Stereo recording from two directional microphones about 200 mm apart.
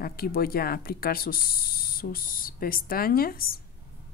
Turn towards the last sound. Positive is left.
turn(degrees=45)  # may be behind; listen again after turning